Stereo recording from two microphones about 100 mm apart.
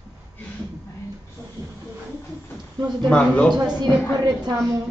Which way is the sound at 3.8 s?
45° right (ahead or behind).